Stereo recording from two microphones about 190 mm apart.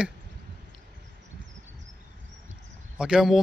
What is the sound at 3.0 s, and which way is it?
Speech, 5° right (ahead or behind).